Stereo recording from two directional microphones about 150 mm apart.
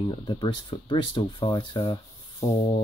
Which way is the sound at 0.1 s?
35° left (ahead or behind).